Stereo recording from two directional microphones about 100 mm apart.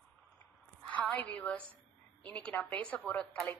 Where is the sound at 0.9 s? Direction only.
15° left (ahead or behind).